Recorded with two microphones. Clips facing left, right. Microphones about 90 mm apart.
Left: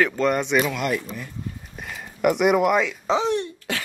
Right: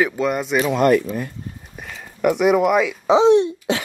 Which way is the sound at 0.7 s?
50° right (ahead or behind).